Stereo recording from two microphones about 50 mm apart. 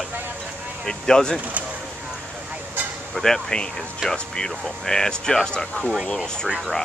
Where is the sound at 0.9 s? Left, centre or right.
Centre.